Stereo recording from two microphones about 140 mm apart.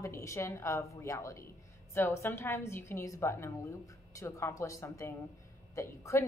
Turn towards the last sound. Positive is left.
turn(degrees=20)  # may be behind; listen again after turning